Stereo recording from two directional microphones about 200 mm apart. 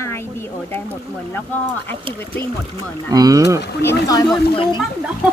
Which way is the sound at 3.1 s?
20° right (ahead or behind).